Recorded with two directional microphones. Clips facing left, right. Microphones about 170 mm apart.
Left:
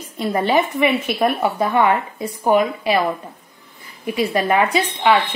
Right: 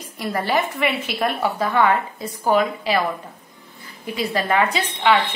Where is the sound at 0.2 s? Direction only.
20° left (ahead or behind).